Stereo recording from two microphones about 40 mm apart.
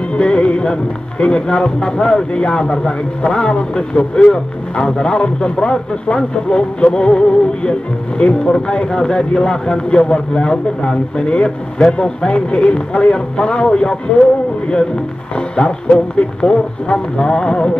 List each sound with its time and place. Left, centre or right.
0.1 s music: left
1.2 s a man's voice: left
15.3 s a man's voice: left